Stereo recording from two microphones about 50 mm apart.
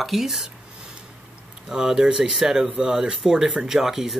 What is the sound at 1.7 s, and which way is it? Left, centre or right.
Speech, centre.